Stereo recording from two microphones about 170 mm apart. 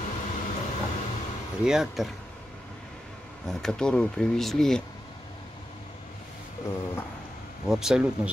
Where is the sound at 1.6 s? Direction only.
5° right (ahead or behind).